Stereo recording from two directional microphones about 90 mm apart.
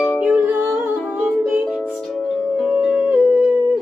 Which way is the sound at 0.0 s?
10° right (ahead or behind).